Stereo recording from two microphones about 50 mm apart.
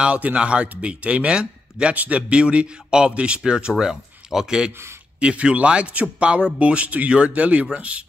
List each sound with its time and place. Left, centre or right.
0.0 s a man's voice: right